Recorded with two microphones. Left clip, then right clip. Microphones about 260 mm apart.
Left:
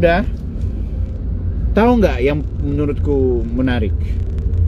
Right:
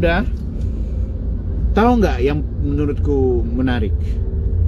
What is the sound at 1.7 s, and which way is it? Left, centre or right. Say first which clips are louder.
Speech: left 2 dB; centre.